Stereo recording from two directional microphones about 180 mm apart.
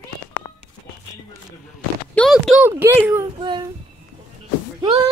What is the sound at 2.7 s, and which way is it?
Speech, 10° right (ahead or behind).